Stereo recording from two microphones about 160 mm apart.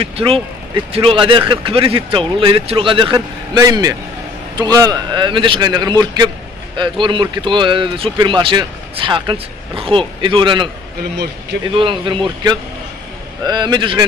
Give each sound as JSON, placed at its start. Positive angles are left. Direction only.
{"t": 0.0, "sound": "a man's voice", "side_deg": -35}
{"t": 11.7, "sound": "a man's voice", "side_deg": -30}